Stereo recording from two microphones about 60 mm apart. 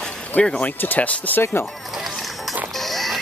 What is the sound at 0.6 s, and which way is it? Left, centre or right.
Speech, left.